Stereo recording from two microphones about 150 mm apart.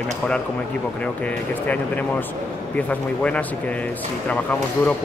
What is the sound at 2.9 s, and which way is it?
Speech, 10° left (ahead or behind).